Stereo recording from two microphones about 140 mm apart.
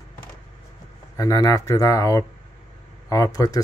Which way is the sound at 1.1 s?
25° left (ahead or behind).